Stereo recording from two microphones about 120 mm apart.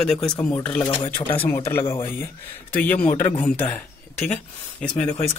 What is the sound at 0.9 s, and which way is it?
Speech, 45° left (ahead or behind).